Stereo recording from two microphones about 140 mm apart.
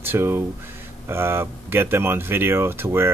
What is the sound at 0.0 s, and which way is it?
Speech, 15° right (ahead or behind).